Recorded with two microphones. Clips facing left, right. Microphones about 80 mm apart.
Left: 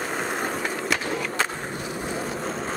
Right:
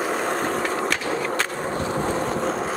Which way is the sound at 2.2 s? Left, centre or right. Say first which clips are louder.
Right 5 dB; centre.